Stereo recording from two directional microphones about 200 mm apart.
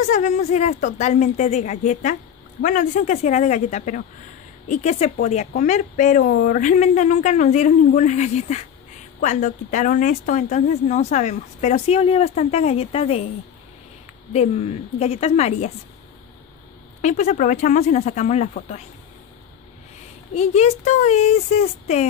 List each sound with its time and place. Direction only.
0.1 s speech: 35° left (ahead or behind)
14.3 s speech: 30° left (ahead or behind)
17.0 s speech: 35° left (ahead or behind)
20.3 s speech: 35° left (ahead or behind)